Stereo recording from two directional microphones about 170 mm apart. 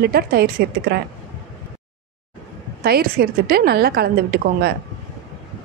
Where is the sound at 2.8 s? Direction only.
60° right (ahead or behind).